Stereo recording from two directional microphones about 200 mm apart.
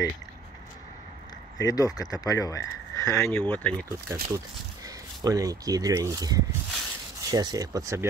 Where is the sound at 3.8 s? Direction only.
15° right (ahead or behind).